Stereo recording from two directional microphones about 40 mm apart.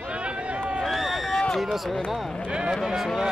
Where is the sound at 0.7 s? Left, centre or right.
Centre.